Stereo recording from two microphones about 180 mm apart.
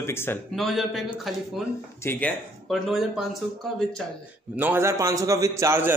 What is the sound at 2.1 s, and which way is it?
Speech, 10° left (ahead or behind).